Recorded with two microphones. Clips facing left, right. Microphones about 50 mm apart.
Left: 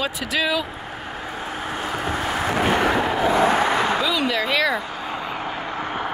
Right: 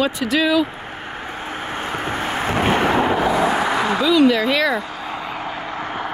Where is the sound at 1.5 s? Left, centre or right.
Right.